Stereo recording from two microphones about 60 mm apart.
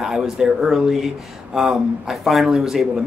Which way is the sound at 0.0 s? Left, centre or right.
Centre.